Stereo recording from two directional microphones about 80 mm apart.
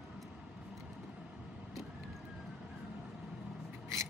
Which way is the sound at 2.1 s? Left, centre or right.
Centre.